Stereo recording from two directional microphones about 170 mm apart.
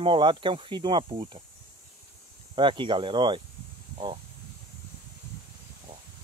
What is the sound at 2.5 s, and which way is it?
Speech, 30° right (ahead or behind).